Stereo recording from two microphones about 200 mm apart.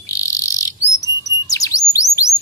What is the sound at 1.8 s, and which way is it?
Bird, 15° left (ahead or behind).